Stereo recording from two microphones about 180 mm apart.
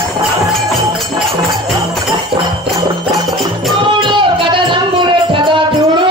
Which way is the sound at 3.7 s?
25° right (ahead or behind).